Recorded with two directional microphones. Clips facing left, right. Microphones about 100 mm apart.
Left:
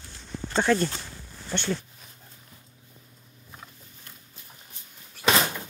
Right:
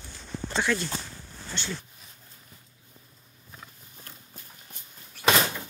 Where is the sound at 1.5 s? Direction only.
60° left (ahead or behind).